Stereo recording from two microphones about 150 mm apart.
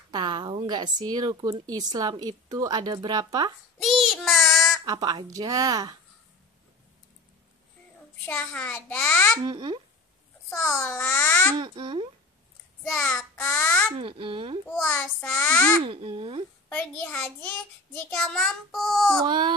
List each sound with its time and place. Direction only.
0.1 s a woman's voice: 30° right (ahead or behind)
3.8 s child singing: centre (ahead or behind)
4.8 s speech: 25° right (ahead or behind)
8.3 s a child's voice: 10° left (ahead or behind)
9.4 s speech: 30° right (ahead or behind)
10.7 s a child's voice: 5° left (ahead or behind)
11.5 s a child's voice: 30° right (ahead or behind)
12.9 s a child's voice: 5° left (ahead or behind)
13.9 s a child's voice: 35° right (ahead or behind)
14.7 s a child's voice: 5° left (ahead or behind)
15.8 s a child's voice: 40° right (ahead or behind)
16.6 s a child's voice: 10° left (ahead or behind)
18.1 s child singing: 5° left (ahead or behind)
19.2 s a child's voice: 30° right (ahead or behind)